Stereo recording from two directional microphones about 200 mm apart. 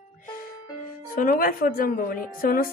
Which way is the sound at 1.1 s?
45° left (ahead or behind).